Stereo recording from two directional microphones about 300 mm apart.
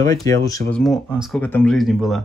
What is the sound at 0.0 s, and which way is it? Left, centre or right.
Speech, centre.